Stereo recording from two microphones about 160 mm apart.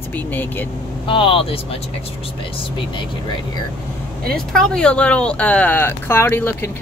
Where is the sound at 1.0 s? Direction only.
35° left (ahead or behind).